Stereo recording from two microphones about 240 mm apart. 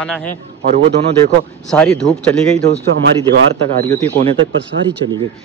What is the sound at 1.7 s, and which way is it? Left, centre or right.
Speech, centre.